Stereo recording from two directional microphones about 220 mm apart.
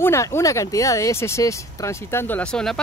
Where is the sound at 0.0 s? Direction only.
10° left (ahead or behind).